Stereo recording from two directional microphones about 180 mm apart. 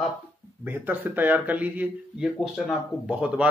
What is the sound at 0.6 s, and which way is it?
Speech, 10° right (ahead or behind).